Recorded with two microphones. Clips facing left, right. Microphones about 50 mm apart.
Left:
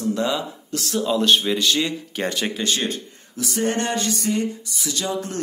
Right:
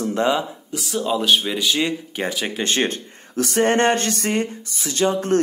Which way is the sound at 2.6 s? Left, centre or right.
Right.